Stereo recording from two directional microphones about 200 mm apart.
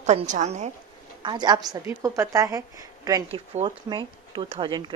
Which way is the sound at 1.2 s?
20° right (ahead or behind).